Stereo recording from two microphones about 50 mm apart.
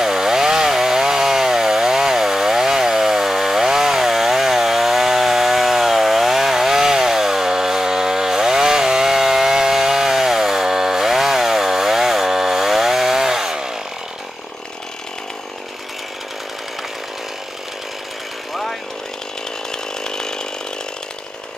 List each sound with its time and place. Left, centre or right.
0.0 s chainsaw: centre
18.5 s chainsaw: centre
20.0 s chainsaw: centre